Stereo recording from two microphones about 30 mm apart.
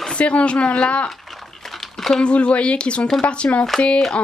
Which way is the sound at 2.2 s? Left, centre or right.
Left.